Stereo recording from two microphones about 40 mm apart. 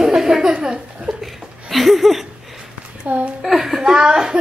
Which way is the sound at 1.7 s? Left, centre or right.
Centre.